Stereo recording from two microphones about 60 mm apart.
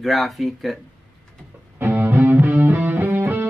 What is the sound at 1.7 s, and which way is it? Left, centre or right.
Music, right.